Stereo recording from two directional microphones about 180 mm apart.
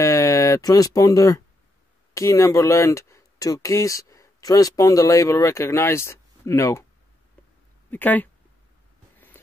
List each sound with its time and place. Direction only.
0.0 s speech: 15° left (ahead or behind)
7.9 s speech: 10° left (ahead or behind)